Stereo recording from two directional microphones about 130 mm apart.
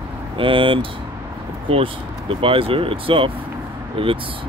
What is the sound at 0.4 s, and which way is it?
Speech, 40° right (ahead or behind).